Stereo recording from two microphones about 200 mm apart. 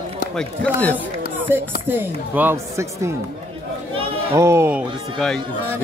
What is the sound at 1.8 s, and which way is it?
Speech, 10° right (ahead or behind).